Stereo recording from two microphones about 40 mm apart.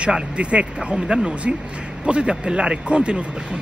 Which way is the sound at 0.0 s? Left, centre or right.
Right.